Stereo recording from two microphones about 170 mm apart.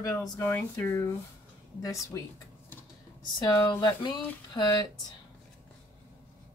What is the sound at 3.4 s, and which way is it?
Speech, 20° left (ahead or behind).